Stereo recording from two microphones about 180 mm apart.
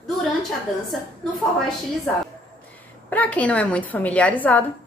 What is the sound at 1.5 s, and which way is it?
Speech, 5° left (ahead or behind).